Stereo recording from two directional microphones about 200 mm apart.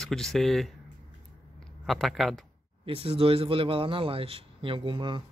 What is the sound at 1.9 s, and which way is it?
Speech, centre (ahead or behind).